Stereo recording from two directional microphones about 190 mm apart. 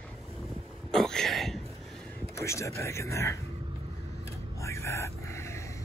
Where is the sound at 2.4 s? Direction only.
15° left (ahead or behind).